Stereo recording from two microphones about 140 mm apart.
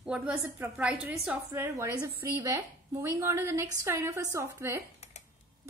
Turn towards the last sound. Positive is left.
turn(degrees=-20)  # may be behind; listen again after turning